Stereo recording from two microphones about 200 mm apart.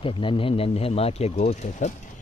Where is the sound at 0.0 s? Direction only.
25° left (ahead or behind).